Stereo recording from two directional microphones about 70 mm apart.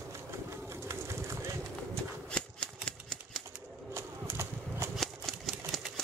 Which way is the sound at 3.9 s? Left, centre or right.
Right.